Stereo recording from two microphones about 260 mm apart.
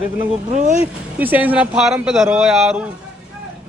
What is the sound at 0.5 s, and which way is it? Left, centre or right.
Speech, right.